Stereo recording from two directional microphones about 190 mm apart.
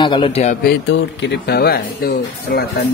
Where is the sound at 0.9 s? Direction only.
65° left (ahead or behind).